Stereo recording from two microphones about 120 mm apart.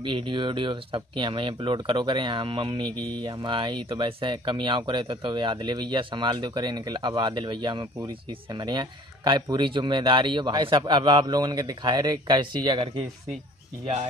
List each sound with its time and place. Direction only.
0.0 s speech: 40° right (ahead or behind)